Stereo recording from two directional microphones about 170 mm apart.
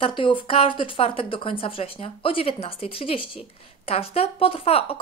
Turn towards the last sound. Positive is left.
turn(degrees=35)  # may be behind; listen again after turning